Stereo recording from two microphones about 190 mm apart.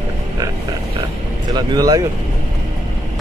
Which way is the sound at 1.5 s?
20° right (ahead or behind).